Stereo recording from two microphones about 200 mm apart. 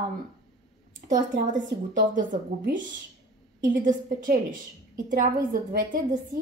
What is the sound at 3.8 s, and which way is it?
A woman's voice, 40° right (ahead or behind).